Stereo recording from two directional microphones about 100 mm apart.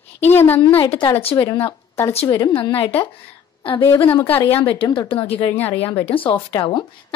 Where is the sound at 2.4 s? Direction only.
60° left (ahead or behind).